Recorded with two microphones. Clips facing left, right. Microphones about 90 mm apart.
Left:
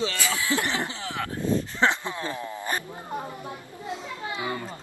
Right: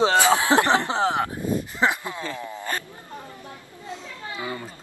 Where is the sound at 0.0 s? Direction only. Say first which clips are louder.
Right 10 dB; 25° right (ahead or behind).